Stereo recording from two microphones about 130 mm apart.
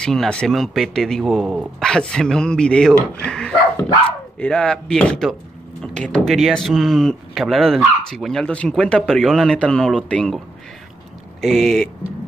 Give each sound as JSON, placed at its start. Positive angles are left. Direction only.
{"t": 0.0, "sound": "speech", "side_deg": 5}
{"t": 11.4, "sound": "speech", "side_deg": 0}